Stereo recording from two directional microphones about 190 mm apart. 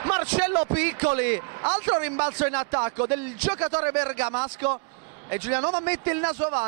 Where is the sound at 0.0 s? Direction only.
15° right (ahead or behind).